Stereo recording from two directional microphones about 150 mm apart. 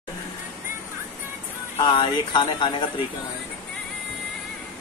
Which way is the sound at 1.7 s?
35° left (ahead or behind).